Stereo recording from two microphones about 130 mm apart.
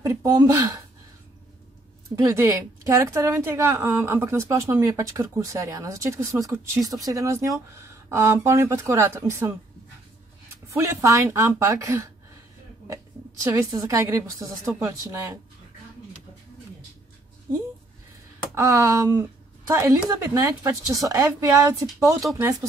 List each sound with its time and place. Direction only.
0.0 s a sound: 20° right (ahead or behind)
0.5 s a woman's voice: 20° right (ahead or behind)
2.1 s a woman's voice: 25° right (ahead or behind)
10.7 s a woman's voice: 20° right (ahead or behind)
18.5 s a woman's voice: 20° right (ahead or behind)